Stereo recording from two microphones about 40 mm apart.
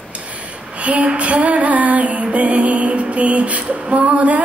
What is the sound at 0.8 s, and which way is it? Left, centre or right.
Music, right.